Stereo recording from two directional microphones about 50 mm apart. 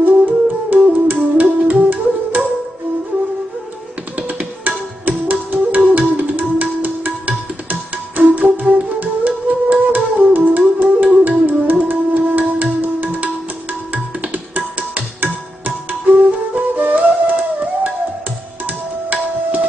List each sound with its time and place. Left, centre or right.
0.7 s music: right
4.3 s tabla: right
5.9 s music: right
8.2 s flute: right
11.1 s music: right
13.9 s tabla: right
15.6 s flute: right
18.7 s tabla: right